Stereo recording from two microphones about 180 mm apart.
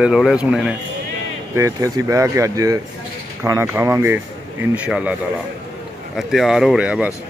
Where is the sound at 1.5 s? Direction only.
15° right (ahead or behind).